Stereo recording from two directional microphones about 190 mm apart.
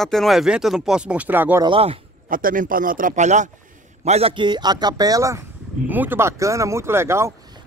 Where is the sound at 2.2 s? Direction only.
45° right (ahead or behind); by 7.4 s 15° right (ahead or behind).